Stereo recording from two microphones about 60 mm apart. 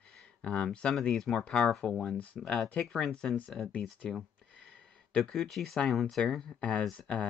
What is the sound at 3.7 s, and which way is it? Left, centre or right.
Speech, centre.